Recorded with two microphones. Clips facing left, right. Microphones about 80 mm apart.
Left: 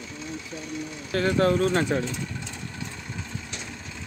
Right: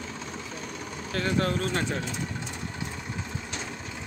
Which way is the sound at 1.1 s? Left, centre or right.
Centre.